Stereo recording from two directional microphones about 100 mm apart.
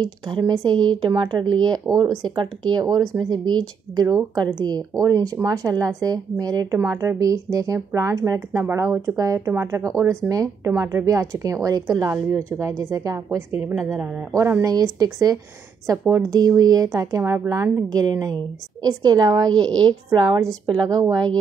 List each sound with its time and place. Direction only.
0.3 s speech: 45° right (ahead or behind)
13.6 s speech: 20° right (ahead or behind)
14.6 s speech: 40° right (ahead or behind)